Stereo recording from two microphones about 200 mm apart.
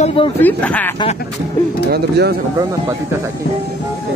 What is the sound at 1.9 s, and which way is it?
Speech, 55° right (ahead or behind).